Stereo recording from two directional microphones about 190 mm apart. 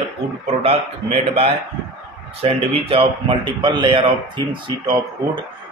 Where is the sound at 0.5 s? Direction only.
30° right (ahead or behind).